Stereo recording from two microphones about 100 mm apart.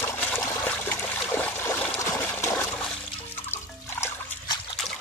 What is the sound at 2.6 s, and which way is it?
Music, 10° left (ahead or behind).